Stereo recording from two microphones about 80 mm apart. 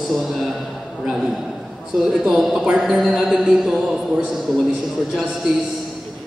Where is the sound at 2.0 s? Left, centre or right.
Centre.